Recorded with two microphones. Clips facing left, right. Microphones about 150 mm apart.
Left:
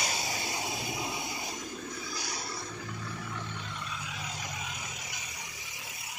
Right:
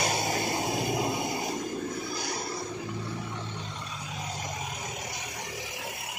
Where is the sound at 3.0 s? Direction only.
30° right (ahead or behind); by 5.1 s 45° right (ahead or behind).